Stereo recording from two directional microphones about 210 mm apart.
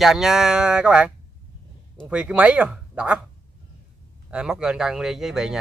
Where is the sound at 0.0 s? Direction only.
Centre (ahead or behind).